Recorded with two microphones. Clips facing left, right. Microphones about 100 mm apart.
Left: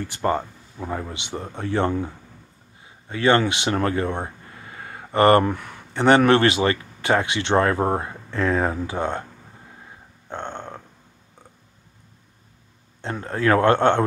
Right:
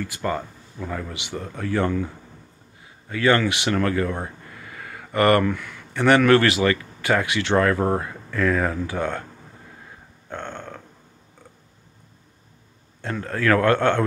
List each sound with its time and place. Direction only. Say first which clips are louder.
0.0 s speech: left 3 dB; 30° left (ahead or behind)
10.3 s speech: left 1 dB; 20° left (ahead or behind)
13.0 s speech: left 1 dB; 25° left (ahead or behind)